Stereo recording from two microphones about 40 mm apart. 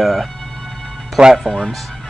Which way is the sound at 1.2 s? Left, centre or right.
Right.